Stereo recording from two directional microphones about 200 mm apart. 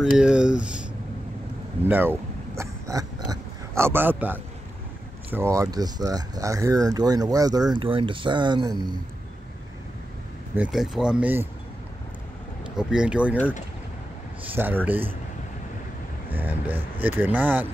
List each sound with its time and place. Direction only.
0.0 s speech: 5° right (ahead or behind)
1.9 s a sound: 10° right (ahead or behind)
5.3 s speech: 15° right (ahead or behind)
10.5 s speech: 5° right (ahead or behind)
12.7 s speech: 5° right (ahead or behind)
14.5 s speech: 10° right (ahead or behind)
16.3 s speech: 10° right (ahead or behind)